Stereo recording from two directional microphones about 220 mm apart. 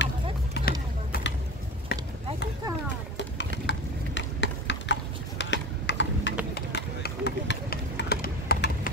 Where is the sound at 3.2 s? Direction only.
55° left (ahead or behind).